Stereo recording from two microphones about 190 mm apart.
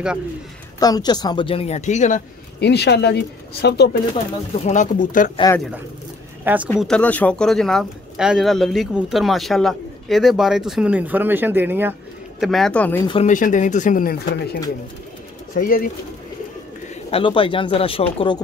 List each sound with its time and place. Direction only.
0.7 s a woman's voice: 20° left (ahead or behind); by 2.2 s 40° left (ahead or behind)
2.6 s speech: 60° left (ahead or behind)
4.6 s speech: 40° left (ahead or behind)
6.4 s speech: 10° right (ahead or behind)
6.8 s speech: 5° left (ahead or behind); by 11.9 s 10° right (ahead or behind)
12.4 s speech: centre (ahead or behind)
13.0 s a woman's voice: 25° left (ahead or behind)
13.3 s speech: 45° left (ahead or behind)
17.1 s a woman's voice: 25° left (ahead or behind)